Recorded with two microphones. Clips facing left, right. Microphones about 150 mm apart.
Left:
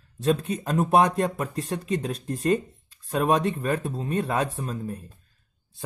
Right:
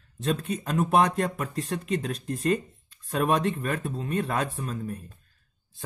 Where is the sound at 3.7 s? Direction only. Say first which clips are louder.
Left 3 dB; 40° left (ahead or behind).